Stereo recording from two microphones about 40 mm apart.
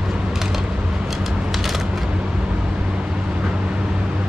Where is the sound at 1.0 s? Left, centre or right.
Centre.